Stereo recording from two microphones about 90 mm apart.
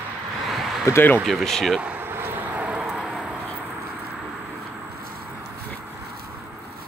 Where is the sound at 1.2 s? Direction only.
5° left (ahead or behind).